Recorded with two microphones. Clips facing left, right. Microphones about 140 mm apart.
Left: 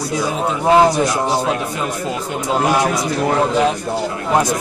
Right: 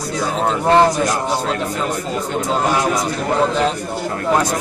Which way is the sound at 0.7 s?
5° left (ahead or behind).